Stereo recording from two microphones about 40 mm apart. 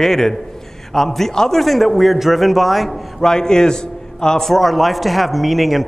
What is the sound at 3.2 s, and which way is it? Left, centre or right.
Speech, centre.